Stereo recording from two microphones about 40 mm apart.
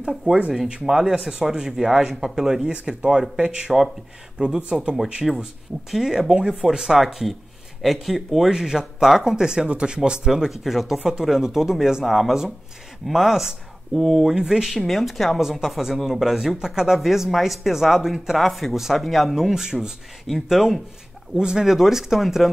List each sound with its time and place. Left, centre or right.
0.1 s a man's voice: centre
2.7 s speech: right
5.2 s a woman's voice: centre
14.8 s a woman's voice: centre
21.4 s a man's voice: centre